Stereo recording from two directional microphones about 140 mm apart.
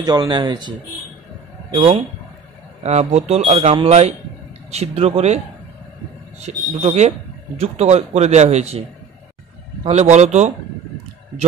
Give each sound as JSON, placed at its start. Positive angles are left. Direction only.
{"t": 0.0, "sound": "speech", "side_deg": -30}
{"t": 1.7, "sound": "speech", "side_deg": -45}
{"t": 6.5, "sound": "speech", "side_deg": -60}
{"t": 9.8, "sound": "speech", "side_deg": -55}